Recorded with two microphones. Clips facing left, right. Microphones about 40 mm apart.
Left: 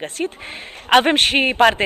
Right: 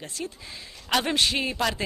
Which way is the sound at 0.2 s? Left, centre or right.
Left.